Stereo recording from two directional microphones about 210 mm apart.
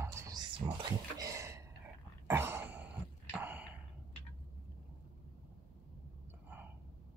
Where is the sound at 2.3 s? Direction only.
10° right (ahead or behind).